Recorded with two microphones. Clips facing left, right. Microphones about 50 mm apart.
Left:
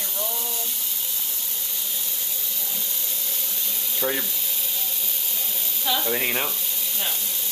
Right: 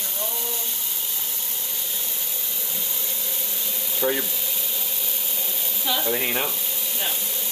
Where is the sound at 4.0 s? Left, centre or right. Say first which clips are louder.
Right 3 dB; centre.